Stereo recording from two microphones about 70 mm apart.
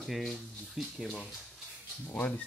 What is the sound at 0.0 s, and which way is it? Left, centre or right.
Speech, centre.